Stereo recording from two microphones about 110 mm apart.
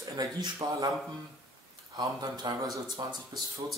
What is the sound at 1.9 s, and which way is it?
Speech, 40° right (ahead or behind).